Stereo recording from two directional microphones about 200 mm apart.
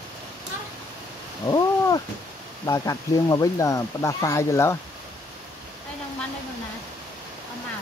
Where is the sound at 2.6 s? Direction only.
15° left (ahead or behind).